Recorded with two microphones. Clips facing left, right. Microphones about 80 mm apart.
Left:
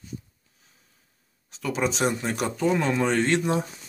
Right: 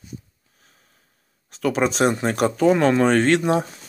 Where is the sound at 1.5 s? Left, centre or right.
Right.